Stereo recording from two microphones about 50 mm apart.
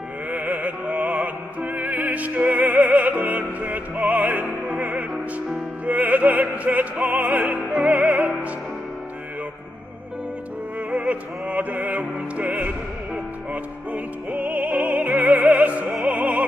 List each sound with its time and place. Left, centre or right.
0.3 s music: right
4.1 s opera: right
4.7 s music: right
5.9 s opera: right
7.9 s music: right
10.9 s music: right